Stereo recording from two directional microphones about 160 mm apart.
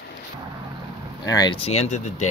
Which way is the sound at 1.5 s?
40° left (ahead or behind).